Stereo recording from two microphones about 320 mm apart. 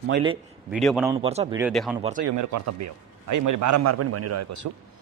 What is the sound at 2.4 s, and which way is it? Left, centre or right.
A man's voice, right.